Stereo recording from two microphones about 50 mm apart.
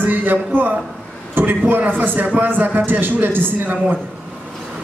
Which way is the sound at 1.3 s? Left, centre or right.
Right.